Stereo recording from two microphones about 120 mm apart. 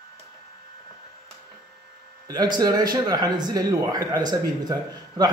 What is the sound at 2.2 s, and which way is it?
Speech, 35° right (ahead or behind).